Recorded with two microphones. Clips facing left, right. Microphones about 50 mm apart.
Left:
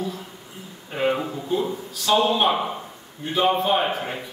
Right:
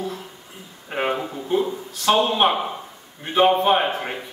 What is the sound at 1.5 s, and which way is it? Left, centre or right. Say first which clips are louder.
Speech: right 3 dB; right.